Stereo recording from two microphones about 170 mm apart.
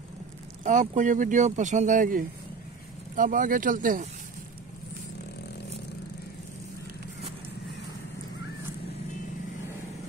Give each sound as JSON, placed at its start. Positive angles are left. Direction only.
{"t": 0.7, "sound": "speech", "side_deg": -50}